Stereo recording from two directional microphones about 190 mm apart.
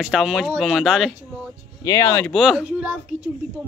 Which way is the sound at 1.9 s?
15° left (ahead or behind).